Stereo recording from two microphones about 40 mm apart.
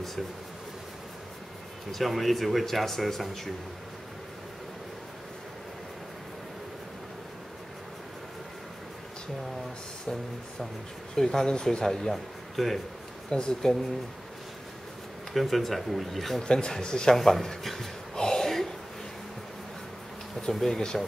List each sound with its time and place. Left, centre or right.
1.9 s speech: centre
11.1 s a man's voice: centre
12.1 s speech: centre
13.3 s speech: centre
15.3 s speech: centre
16.4 s a man's voice: centre
17.1 s a sound: centre
20.5 s a man's voice: centre